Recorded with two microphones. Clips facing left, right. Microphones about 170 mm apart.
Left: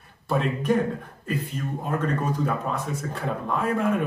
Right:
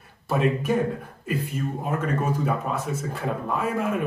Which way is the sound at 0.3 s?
5° right (ahead or behind).